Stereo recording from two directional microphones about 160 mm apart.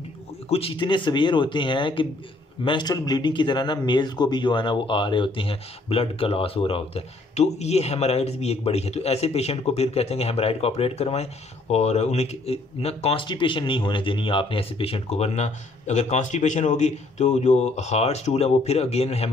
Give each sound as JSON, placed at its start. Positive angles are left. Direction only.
{"t": 0.5, "sound": "speech", "side_deg": 35}